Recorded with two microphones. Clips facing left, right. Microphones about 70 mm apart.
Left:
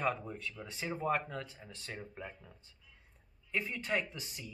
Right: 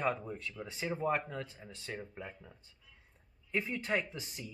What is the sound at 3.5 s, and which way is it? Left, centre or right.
Speech, centre.